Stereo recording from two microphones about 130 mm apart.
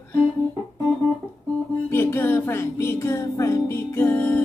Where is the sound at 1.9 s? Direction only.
20° left (ahead or behind).